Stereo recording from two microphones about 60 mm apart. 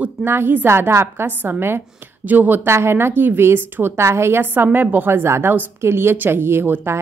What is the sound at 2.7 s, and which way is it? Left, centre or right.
Speech, right.